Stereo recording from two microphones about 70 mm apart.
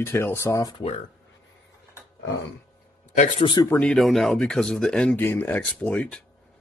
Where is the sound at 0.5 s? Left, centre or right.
Left.